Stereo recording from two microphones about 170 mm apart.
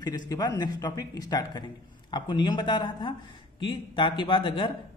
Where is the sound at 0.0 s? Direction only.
25° left (ahead or behind).